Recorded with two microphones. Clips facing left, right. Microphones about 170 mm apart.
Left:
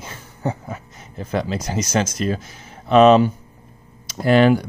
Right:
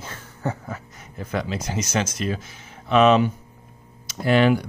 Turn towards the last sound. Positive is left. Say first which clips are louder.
# left 4 dB
turn(degrees=40)  # may be behind; listen again after turning